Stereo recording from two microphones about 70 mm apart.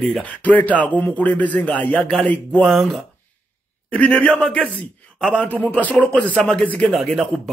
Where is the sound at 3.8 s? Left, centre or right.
Centre.